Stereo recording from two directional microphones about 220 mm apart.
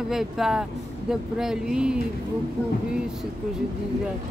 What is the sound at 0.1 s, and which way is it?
Speech, centre (ahead or behind).